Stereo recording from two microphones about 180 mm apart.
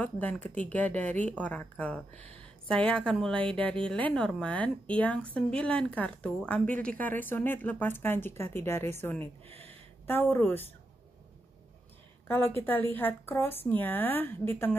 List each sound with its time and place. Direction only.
0.0 s a woman's voice: 10° left (ahead or behind)
9.2 s speech: 35° right (ahead or behind)
10.0 s a woman's voice: 10° left (ahead or behind)
12.3 s a woman's voice: 15° left (ahead or behind)